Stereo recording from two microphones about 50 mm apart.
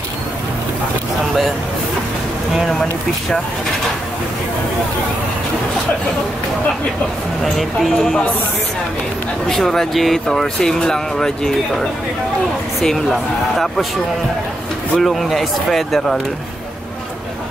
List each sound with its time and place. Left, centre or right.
7.5 s speech: centre
9.5 s speech: centre
12.8 s speech: centre
15.0 s speech: centre